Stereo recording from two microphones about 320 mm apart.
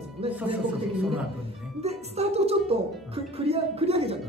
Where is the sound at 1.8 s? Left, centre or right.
Centre.